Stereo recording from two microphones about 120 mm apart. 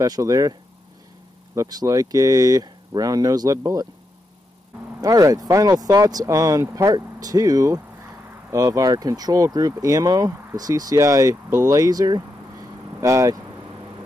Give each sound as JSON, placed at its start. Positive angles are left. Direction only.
{"t": 0.0, "sound": "speech", "side_deg": -30}
{"t": 5.0, "sound": "speech", "side_deg": -30}